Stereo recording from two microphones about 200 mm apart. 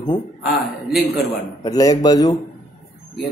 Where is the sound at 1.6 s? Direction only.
15° left (ahead or behind).